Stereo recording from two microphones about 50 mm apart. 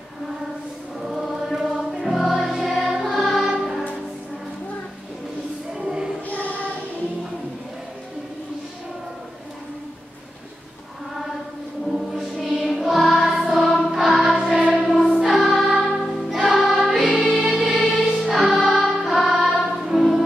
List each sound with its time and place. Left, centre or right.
1.0 s choir: centre
1.8 s music: centre
5.7 s a sound: centre
6.2 s child singing: left
12.1 s music: centre